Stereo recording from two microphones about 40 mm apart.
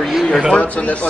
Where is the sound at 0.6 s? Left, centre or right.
Left.